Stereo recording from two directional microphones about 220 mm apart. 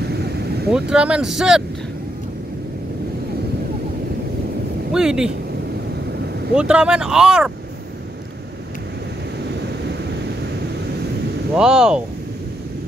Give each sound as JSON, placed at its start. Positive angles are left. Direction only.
{"t": 0.0, "sound": "vehicle", "side_deg": -45}
{"t": 0.7, "sound": "speech", "side_deg": -5}
{"t": 4.9, "sound": "speech", "side_deg": -5}
{"t": 6.5, "sound": "speech", "side_deg": -5}
{"t": 11.5, "sound": "speech", "side_deg": -5}